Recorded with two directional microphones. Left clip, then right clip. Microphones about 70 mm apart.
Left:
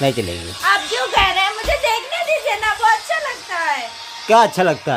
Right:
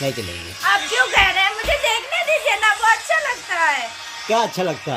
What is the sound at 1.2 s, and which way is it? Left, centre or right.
Music, left.